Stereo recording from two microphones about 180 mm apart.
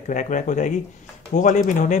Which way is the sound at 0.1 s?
45° left (ahead or behind).